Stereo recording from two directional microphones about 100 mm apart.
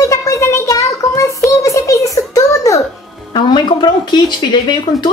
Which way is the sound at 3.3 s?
50° left (ahead or behind).